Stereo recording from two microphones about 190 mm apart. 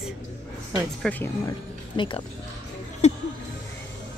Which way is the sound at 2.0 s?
25° left (ahead or behind).